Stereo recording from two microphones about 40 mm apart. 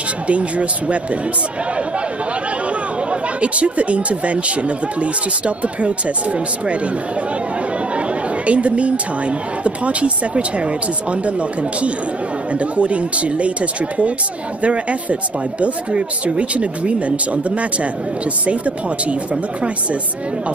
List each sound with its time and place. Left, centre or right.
0.3 s speech: right
3.1 s speech: right
8.5 s speech: right